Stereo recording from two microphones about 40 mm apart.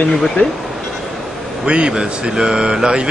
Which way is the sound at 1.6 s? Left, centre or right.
Right.